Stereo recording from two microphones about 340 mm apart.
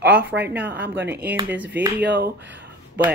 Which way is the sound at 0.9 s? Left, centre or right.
Right.